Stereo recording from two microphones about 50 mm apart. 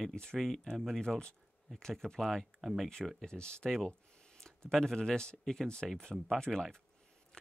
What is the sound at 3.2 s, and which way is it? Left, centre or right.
Speech, centre.